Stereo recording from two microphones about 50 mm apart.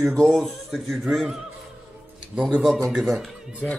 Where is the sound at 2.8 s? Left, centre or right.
Centre.